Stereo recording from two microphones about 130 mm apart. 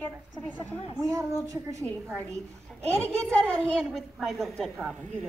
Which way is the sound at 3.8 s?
Centre (ahead or behind).